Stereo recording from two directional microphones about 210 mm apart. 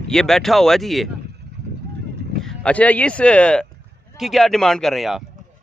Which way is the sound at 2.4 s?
5° left (ahead or behind).